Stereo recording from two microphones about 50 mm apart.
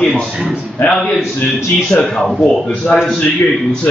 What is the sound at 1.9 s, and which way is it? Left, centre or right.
Speech, left.